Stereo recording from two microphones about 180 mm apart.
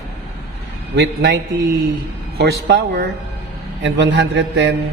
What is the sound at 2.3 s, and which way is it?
Speech, 65° right (ahead or behind).